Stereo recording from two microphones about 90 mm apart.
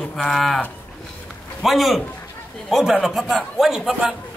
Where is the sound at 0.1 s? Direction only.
5° left (ahead or behind).